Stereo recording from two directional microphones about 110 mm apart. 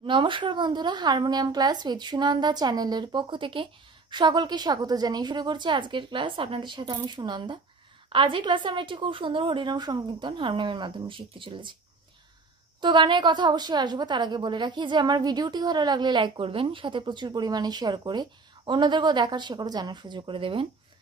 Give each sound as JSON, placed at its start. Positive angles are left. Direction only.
{"t": 0.0, "sound": "a woman's voice", "side_deg": -50}
{"t": 12.8, "sound": "a woman's voice", "side_deg": -45}